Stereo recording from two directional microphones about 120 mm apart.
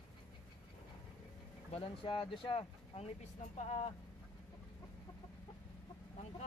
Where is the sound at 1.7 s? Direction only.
50° left (ahead or behind).